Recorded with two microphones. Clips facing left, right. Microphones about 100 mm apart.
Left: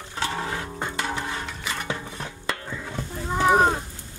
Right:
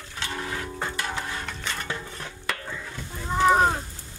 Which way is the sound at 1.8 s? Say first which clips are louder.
Left 2 dB; 20° left (ahead or behind).